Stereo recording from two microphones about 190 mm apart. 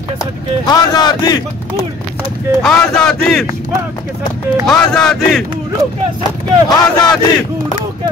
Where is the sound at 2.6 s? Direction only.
5° left (ahead or behind).